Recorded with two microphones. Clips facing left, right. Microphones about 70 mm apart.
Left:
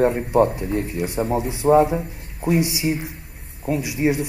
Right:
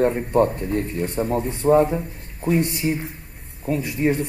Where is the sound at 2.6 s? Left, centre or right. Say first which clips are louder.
Left 1 dB; left.